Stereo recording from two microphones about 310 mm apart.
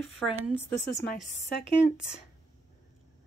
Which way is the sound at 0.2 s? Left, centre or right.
Centre.